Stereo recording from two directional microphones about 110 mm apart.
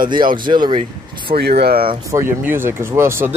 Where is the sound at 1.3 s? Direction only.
90° right.